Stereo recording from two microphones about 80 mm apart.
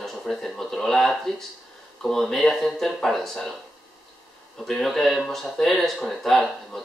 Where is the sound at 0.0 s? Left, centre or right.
Centre.